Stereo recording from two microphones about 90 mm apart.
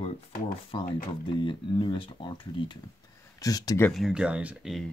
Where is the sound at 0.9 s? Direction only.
60° left (ahead or behind).